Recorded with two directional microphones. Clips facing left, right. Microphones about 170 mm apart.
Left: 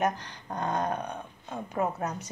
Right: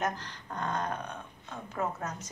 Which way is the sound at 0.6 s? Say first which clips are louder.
Left 4 dB; 15° left (ahead or behind).